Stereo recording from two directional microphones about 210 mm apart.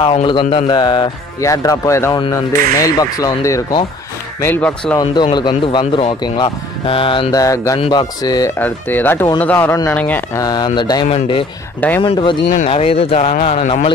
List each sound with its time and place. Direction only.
0.0 s a man's voice: 25° left (ahead or behind); by 4.9 s 5° left (ahead or behind)
4.9 s a man's voice: 20° left (ahead or behind)